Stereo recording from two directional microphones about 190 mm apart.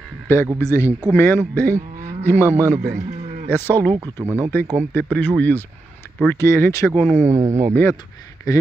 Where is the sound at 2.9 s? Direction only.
35° right (ahead or behind).